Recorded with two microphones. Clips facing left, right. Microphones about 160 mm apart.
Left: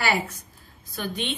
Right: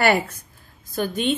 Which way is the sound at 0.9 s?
45° right (ahead or behind).